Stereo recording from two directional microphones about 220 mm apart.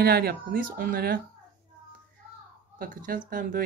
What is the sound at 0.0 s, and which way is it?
Speech, 45° right (ahead or behind).